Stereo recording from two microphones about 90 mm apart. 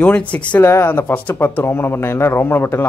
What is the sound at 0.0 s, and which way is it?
Speech, 15° left (ahead or behind).